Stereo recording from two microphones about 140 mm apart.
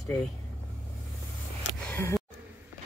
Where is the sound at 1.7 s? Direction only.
20° left (ahead or behind).